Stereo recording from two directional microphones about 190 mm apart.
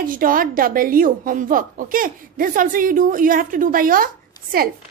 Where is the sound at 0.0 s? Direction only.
45° right (ahead or behind).